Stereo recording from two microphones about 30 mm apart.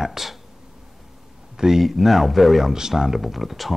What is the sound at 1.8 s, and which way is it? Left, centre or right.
Speech, centre.